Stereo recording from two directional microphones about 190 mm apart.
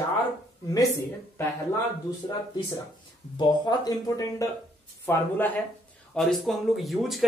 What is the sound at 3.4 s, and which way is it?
Speech, 20° left (ahead or behind).